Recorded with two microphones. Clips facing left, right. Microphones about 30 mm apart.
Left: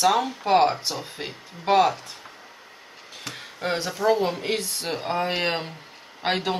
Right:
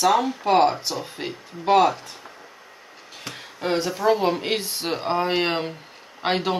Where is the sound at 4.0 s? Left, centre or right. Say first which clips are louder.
Even; centre.